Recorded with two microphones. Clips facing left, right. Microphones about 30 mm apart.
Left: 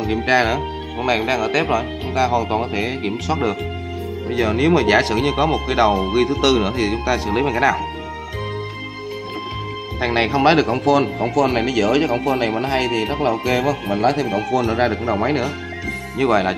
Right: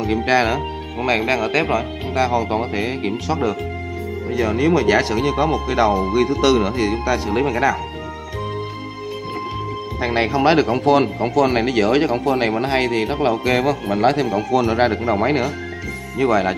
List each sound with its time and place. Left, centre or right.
0.0 s speech: centre
1.0 s speech: centre
4.4 s speech: left
6.2 s speech: centre
9.9 s speech: left; by 10.9 s centre
11.2 s speech: centre
11.6 s speech: right
13.0 s speech: centre
13.5 s speech: right
14.5 s speech: right
14.9 s speech: centre
16.2 s speech: centre